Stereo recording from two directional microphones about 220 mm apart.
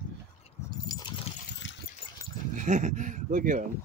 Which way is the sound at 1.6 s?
55° left (ahead or behind).